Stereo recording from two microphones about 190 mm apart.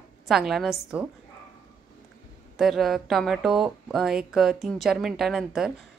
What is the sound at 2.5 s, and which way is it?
A woman's voice, centre (ahead or behind).